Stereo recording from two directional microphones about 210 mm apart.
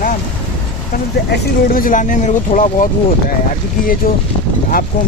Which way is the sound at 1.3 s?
40° left (ahead or behind).